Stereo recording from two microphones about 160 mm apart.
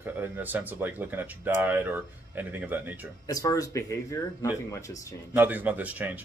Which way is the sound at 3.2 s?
20° left (ahead or behind).